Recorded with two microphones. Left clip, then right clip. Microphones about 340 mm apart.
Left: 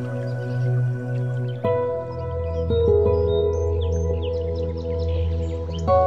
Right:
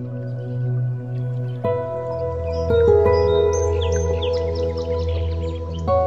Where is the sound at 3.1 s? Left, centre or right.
Right.